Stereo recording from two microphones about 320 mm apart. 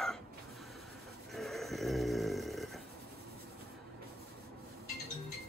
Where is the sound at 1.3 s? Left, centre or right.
Centre.